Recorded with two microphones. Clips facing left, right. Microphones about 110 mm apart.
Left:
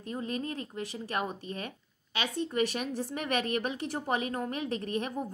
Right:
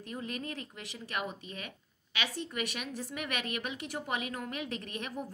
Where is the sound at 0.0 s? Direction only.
30° left (ahead or behind).